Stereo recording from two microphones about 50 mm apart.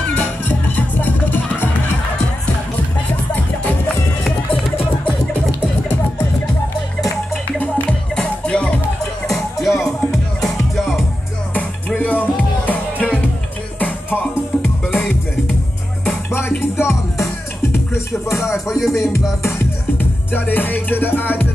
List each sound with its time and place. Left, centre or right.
0.1 s music: left
8.2 s music: left
9.3 s music: centre
12.0 s music: left
16.3 s music: left
17.9 s music: left
18.7 s music: centre
20.0 s music: left